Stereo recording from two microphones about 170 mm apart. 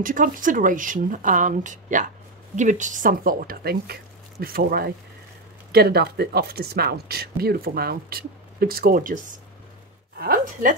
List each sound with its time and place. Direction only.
0.0 s speech: 50° right (ahead or behind)